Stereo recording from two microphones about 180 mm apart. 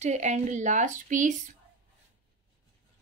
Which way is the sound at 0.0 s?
40° right (ahead or behind).